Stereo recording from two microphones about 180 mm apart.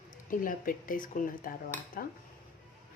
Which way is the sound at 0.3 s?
50° left (ahead or behind).